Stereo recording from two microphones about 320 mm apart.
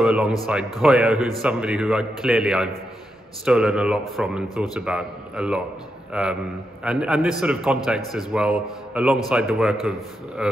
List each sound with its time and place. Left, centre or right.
0.0 s a man's voice: centre